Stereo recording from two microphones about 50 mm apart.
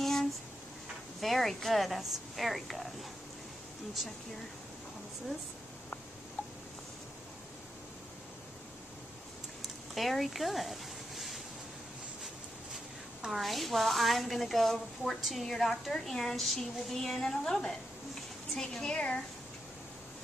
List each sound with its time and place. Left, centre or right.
0.0 s a sound: centre
1.2 s a woman's voice: centre
9.9 s speech: centre
12.7 s a woman's voice: centre